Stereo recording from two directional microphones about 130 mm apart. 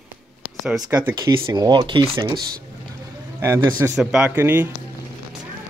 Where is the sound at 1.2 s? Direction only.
25° right (ahead or behind).